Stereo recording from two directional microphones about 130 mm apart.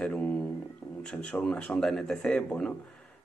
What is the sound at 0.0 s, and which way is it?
A man's voice, 5° left (ahead or behind).